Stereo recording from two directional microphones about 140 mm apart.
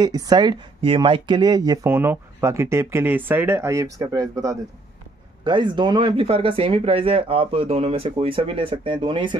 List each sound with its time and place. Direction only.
0.0 s speech: 30° right (ahead or behind)
1.9 s speech: 15° right (ahead or behind); by 9.4 s 35° right (ahead or behind)